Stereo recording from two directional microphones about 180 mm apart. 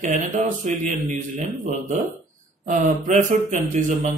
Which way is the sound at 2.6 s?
45° right (ahead or behind).